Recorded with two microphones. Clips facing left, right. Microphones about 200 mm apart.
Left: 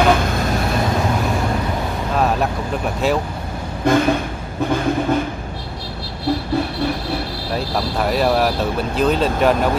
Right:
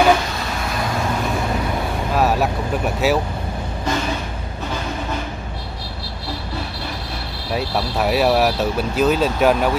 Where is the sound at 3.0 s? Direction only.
5° right (ahead or behind).